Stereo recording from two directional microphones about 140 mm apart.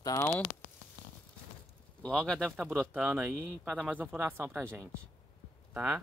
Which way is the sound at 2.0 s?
5° left (ahead or behind).